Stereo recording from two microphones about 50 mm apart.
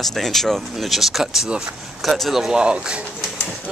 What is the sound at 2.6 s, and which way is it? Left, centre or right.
Speech, centre.